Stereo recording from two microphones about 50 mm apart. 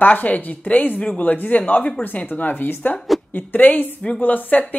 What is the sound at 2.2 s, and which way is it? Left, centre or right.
A woman's voice, left.